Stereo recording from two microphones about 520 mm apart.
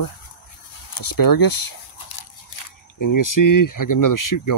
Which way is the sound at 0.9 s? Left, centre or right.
Left.